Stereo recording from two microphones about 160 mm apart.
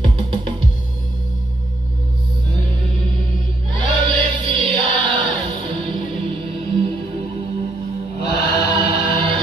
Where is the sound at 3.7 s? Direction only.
35° right (ahead or behind).